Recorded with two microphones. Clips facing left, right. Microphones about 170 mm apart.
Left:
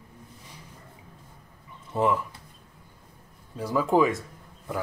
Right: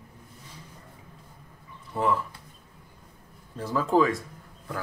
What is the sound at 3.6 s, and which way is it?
Speech, 15° left (ahead or behind).